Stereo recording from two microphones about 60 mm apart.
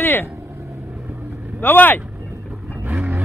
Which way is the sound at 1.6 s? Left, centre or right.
Left.